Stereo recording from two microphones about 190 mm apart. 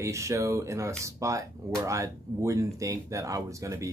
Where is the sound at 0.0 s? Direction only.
15° right (ahead or behind).